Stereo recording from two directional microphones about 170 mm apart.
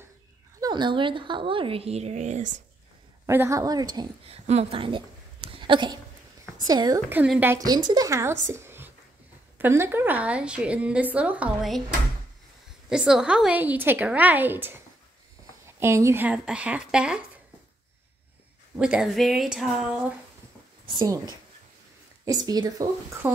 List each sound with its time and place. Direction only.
0.6 s a woman's voice: 25° right (ahead or behind); by 2.6 s 45° right (ahead or behind)
3.3 s speech: 15° right (ahead or behind)
4.3 s a woman's voice: 35° right (ahead or behind)
7.1 s a woman's voice: 10° right (ahead or behind)
7.5 s a woman's voice: 25° right (ahead or behind); by 11.8 s 5° right (ahead or behind)
12.9 s a woman's voice: 5° right (ahead or behind)
18.8 s a woman's voice: 5° right (ahead or behind)
20.8 s a woman's voice: 25° right (ahead or behind)
22.2 s speech: 20° right (ahead or behind)